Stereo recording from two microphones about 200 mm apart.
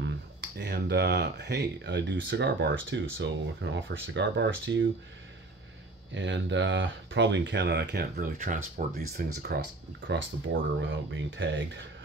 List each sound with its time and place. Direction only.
0.6 s speech: 55° right (ahead or behind)
6.1 s speech: 65° right (ahead or behind)
10.0 s speech: 70° right (ahead or behind)